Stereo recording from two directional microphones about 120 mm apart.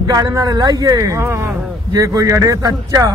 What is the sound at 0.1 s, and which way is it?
Speech, 30° right (ahead or behind).